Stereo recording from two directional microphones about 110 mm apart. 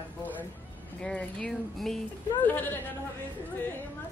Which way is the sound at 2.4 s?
15° left (ahead or behind).